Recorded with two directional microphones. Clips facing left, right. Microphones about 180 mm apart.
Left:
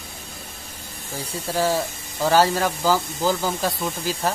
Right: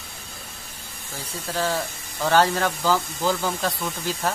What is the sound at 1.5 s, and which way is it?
Speech, 10° left (ahead or behind).